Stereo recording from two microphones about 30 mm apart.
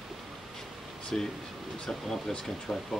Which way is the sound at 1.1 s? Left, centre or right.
Left.